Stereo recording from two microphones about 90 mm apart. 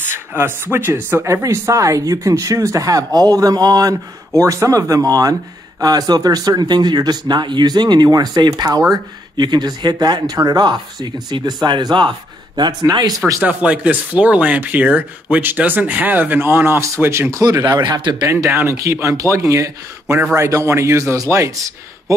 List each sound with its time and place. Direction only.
0.1 s speech: 25° right (ahead or behind); by 3.9 s 45° right (ahead or behind)
4.3 s speech: 35° right (ahead or behind); by 12.1 s 55° right (ahead or behind)
12.9 s speech: 45° right (ahead or behind)
13.4 s speech: 15° right (ahead or behind); by 18.1 s 50° right (ahead or behind)
18.3 s speech: 35° right (ahead or behind)